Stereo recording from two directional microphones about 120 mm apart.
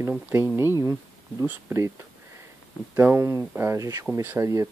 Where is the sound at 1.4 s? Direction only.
25° right (ahead or behind).